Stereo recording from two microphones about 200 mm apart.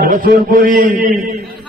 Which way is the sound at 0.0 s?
40° right (ahead or behind).